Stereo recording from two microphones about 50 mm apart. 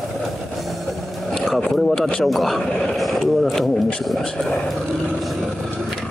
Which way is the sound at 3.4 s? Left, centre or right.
Centre.